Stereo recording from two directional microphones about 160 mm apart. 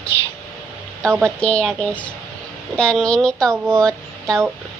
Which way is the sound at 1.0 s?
15° right (ahead or behind).